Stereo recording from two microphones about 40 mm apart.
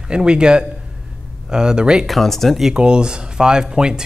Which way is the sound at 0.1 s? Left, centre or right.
Right.